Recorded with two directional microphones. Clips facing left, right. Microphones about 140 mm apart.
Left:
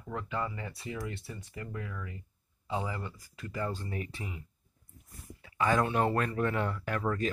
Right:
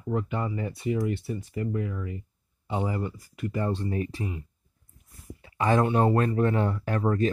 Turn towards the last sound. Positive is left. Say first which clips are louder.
# right 6 dB
turn(degrees=-30)  # may be behind; listen again after turning